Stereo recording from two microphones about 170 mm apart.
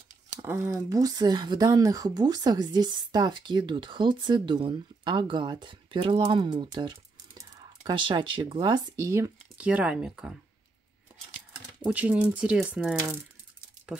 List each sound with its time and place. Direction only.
0.4 s speech: 15° right (ahead or behind)
11.8 s speech: 10° right (ahead or behind)